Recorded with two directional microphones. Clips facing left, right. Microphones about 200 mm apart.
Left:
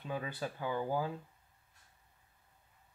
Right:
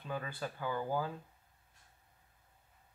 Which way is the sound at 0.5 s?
15° left (ahead or behind).